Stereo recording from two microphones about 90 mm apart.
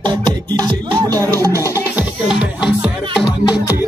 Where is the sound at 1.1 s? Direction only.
40° right (ahead or behind).